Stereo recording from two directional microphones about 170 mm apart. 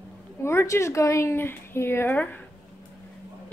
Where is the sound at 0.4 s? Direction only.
15° left (ahead or behind).